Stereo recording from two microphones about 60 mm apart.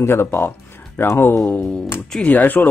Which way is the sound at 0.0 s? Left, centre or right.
Left.